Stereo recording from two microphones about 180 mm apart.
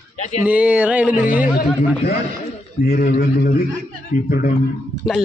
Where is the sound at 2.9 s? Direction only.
60° left (ahead or behind).